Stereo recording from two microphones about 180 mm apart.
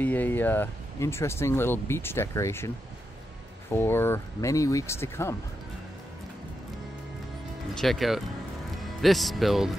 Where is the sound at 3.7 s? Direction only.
10° left (ahead or behind).